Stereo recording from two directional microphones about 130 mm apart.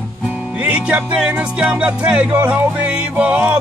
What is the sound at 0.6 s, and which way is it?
Music, 10° right (ahead or behind).